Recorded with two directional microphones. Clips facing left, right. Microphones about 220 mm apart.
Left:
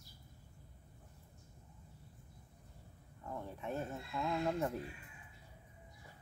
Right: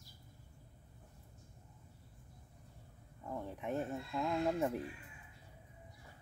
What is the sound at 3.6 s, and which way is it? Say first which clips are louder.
Speech: right 3 dB; 15° right (ahead or behind).